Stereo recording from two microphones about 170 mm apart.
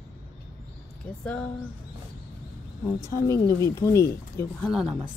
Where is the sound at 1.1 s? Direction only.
5° left (ahead or behind).